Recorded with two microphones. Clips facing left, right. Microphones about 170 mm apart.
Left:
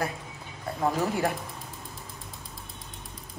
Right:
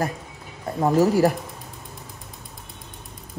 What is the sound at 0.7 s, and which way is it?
Speech, 40° right (ahead or behind).